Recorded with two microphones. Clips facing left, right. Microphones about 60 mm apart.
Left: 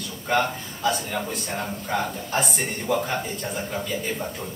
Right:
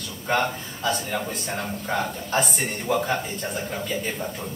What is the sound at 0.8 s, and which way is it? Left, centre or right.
A man's voice, centre.